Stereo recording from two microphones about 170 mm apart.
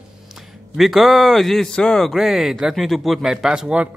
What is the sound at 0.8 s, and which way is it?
Speech, centre (ahead or behind).